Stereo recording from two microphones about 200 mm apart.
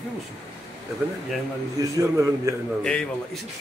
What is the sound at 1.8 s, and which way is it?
Speech, 15° right (ahead or behind).